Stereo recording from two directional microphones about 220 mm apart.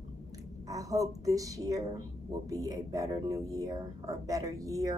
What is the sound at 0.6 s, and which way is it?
Speech, 15° right (ahead or behind).